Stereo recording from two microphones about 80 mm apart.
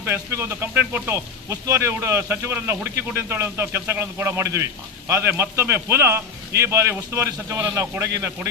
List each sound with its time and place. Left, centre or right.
0.0 s speech: right